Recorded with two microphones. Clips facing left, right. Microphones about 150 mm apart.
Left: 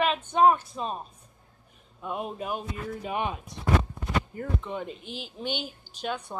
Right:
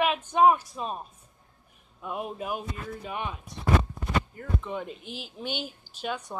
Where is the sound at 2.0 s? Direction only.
5° right (ahead or behind).